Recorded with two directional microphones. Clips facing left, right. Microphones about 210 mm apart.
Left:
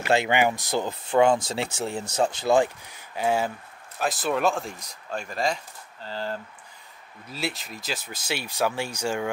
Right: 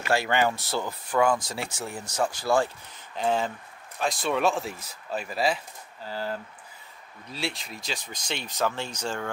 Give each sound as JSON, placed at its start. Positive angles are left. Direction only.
{"t": 0.1, "sound": "speech", "side_deg": 20}